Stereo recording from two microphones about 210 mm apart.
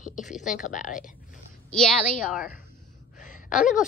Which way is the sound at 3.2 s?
40° left (ahead or behind).